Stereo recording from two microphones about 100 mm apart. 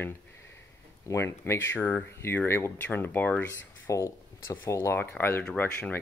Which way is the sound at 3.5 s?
30° left (ahead or behind).